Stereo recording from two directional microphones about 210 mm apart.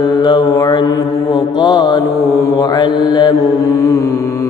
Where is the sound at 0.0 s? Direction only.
20° left (ahead or behind).